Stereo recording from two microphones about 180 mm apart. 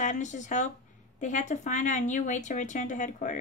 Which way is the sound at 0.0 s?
45° left (ahead or behind).